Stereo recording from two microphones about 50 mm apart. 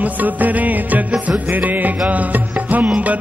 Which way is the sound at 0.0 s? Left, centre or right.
Right.